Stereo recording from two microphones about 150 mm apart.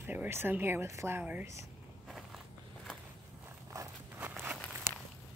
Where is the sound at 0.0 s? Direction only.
15° right (ahead or behind).